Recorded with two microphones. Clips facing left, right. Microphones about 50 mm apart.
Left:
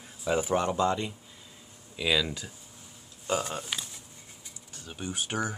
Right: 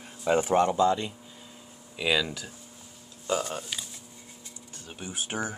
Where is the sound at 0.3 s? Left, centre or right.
Right.